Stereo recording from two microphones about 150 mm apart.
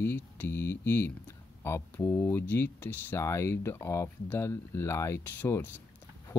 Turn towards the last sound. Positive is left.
turn(degrees=15)  # may be behind; listen again after turning